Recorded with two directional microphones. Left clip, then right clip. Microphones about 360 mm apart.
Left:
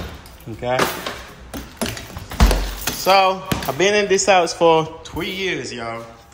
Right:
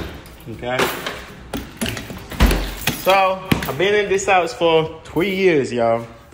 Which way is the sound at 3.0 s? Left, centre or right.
Centre.